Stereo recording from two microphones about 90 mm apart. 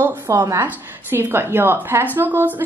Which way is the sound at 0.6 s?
25° right (ahead or behind).